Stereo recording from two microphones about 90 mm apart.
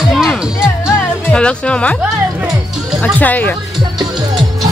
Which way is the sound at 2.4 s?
5° right (ahead or behind).